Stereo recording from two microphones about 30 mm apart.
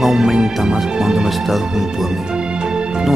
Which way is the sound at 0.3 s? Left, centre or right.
Centre.